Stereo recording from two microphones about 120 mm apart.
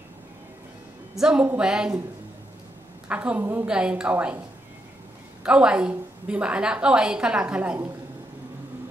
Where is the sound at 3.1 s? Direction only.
10° right (ahead or behind).